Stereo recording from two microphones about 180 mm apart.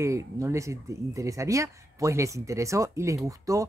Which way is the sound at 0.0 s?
15° right (ahead or behind).